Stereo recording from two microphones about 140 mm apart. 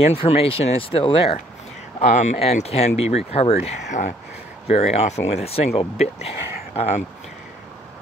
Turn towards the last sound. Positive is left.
turn(degrees=50)  # may be behind; listen again after turning